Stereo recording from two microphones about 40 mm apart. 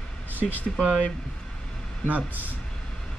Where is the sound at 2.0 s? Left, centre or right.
Right.